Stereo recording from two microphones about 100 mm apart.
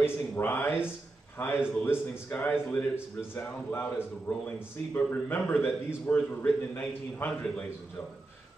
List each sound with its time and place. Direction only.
0.0 s a man's voice: 20° left (ahead or behind)